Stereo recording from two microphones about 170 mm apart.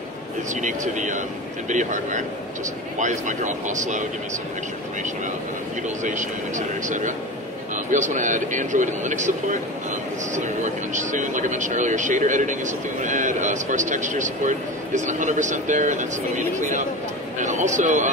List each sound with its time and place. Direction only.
0.6 s speech: 45° right (ahead or behind)
6.0 s speech: 45° right (ahead or behind)